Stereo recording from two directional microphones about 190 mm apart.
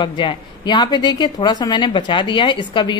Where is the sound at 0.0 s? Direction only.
25° left (ahead or behind).